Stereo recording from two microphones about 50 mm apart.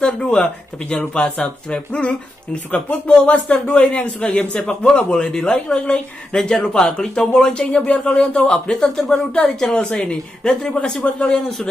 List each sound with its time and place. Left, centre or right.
0.0 s a woman's voice: centre
7.6 s speech: left
8.1 s a woman's voice: centre